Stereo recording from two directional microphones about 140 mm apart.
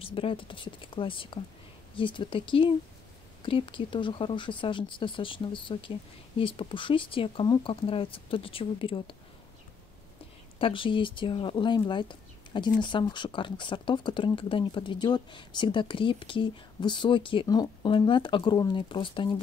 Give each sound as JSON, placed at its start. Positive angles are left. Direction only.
{"t": 0.0, "sound": "speech", "side_deg": 40}
{"t": 10.6, "sound": "speech", "side_deg": 40}